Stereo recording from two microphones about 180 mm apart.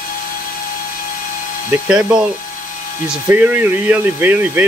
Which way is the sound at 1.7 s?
10° right (ahead or behind).